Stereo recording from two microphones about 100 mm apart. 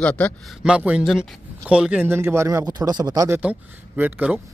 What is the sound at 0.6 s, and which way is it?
Speech, 10° right (ahead or behind).